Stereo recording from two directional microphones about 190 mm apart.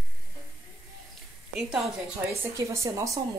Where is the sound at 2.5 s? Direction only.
15° right (ahead or behind).